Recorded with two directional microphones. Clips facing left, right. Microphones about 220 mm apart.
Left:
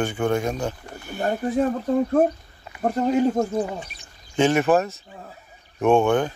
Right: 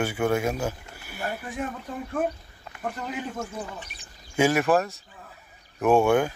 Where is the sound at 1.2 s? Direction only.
40° left (ahead or behind).